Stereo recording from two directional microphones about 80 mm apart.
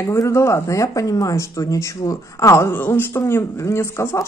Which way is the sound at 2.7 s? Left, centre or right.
Left.